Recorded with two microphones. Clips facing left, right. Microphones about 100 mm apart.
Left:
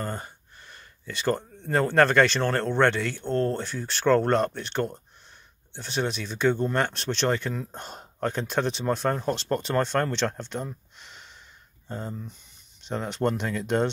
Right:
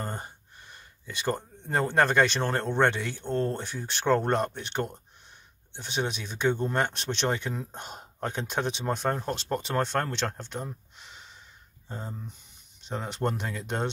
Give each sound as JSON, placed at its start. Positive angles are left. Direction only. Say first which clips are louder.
{"t": 0.0, "sound": "speech", "louder": "left 3 dB", "side_deg": -20}